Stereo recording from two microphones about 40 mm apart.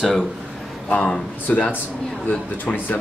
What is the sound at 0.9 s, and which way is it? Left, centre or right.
Speech, left.